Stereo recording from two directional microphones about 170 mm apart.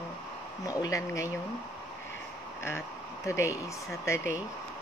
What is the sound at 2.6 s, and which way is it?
Speech, 15° left (ahead or behind).